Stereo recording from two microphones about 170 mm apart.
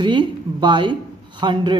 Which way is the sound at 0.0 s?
25° right (ahead or behind).